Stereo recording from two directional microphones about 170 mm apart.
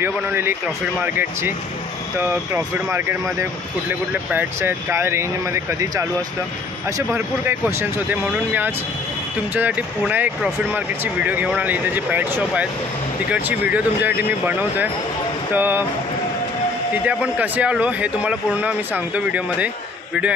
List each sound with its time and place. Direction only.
0.0 s speech: 15° right (ahead or behind)
16.9 s speech: 10° right (ahead or behind)